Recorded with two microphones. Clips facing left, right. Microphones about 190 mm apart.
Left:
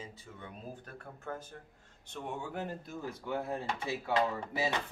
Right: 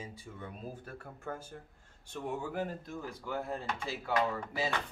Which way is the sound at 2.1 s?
Centre (ahead or behind).